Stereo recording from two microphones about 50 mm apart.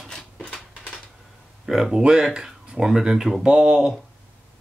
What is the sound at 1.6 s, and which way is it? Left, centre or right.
Speech, centre.